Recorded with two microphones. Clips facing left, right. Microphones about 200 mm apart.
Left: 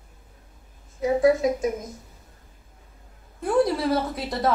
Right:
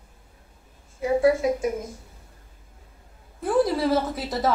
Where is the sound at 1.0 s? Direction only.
5° right (ahead or behind).